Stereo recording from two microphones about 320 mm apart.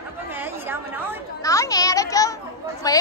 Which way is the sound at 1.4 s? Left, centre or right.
Centre.